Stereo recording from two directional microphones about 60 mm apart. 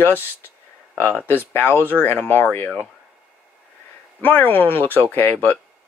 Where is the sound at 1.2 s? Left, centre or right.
Left.